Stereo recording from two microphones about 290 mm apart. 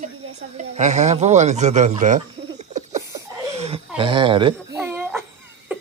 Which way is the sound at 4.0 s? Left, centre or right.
Centre.